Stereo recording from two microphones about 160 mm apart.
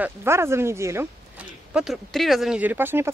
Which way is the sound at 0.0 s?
15° right (ahead or behind).